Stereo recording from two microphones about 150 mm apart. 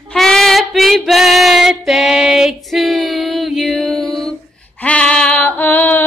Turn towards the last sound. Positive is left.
turn(degrees=10)  # may be behind; listen again after turning